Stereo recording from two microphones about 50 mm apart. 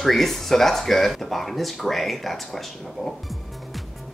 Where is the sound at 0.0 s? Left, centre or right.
Centre.